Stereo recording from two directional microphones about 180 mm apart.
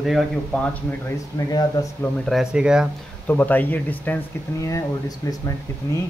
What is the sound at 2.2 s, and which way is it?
Speech, centre (ahead or behind).